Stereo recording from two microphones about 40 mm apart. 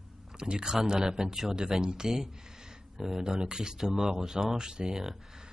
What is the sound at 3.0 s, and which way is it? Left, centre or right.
Speech, centre.